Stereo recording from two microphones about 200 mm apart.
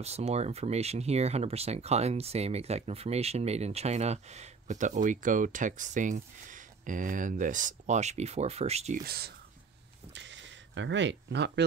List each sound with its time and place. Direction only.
0.0 s speech: 30° right (ahead or behind)
9.0 s speech: 50° right (ahead or behind)
10.1 s cash register: 65° right (ahead or behind)